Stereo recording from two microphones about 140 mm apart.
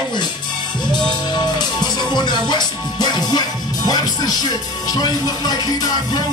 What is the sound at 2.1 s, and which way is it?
Music, 30° left (ahead or behind).